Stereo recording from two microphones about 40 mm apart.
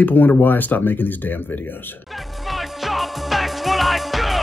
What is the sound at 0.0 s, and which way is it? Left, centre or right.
Speech, left.